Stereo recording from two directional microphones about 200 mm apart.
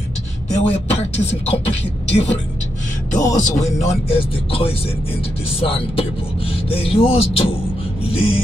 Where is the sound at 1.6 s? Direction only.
60° left (ahead or behind).